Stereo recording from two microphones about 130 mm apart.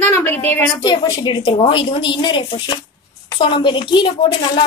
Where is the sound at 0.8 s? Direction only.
30° left (ahead or behind).